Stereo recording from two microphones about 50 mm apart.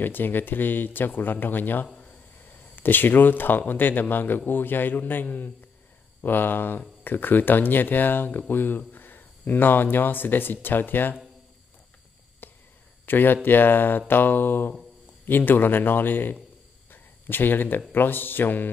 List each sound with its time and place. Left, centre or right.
0.0 s speech: left
12.4 s whispering: left
13.0 s speech: left